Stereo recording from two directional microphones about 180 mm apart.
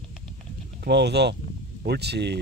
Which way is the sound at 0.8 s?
70° right (ahead or behind).